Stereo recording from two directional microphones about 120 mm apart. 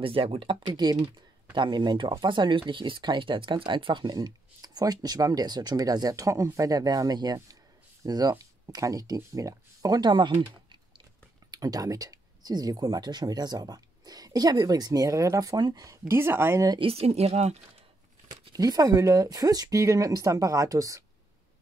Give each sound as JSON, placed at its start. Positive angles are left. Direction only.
{"t": 0.0, "sound": "speech", "side_deg": -50}
{"t": 11.5, "sound": "speech", "side_deg": -30}
{"t": 16.1, "sound": "speech", "side_deg": -20}
{"t": 16.8, "sound": "speech", "side_deg": -55}
{"t": 18.3, "sound": "speech", "side_deg": -35}